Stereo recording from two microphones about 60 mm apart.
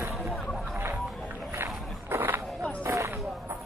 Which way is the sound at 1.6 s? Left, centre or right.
Right.